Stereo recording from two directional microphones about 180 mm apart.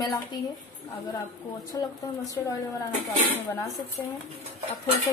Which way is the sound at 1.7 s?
20° left (ahead or behind).